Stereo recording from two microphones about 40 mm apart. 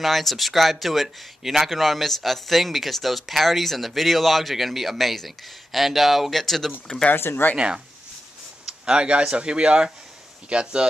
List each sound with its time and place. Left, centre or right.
0.0 s speech: centre
6.4 s speech: centre
7.2 s speech: left
7.5 s speech: right